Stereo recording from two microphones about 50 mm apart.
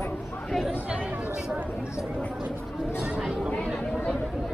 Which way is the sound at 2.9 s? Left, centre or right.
Centre.